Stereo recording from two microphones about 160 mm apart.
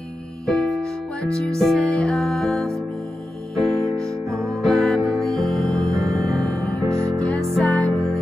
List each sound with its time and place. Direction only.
0.5 s music: 5° left (ahead or behind)
4.1 s music: 20° right (ahead or behind)
4.6 s music: centre (ahead or behind)
6.9 s music: 20° right (ahead or behind)
7.2 s music: 10° left (ahead or behind)